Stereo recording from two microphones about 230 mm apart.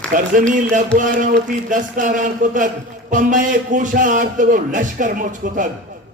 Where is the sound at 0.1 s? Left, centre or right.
Right.